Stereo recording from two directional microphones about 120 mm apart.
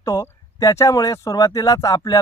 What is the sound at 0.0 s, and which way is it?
Speech, 25° left (ahead or behind).